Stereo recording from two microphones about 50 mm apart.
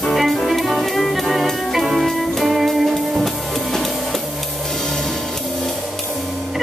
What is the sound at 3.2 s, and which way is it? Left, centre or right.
Music, centre.